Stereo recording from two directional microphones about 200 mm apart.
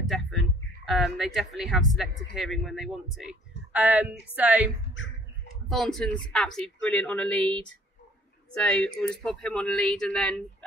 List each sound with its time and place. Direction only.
0.1 s speech: centre (ahead or behind)
5.0 s a sound: 70° left (ahead or behind)
5.7 s speech: centre (ahead or behind)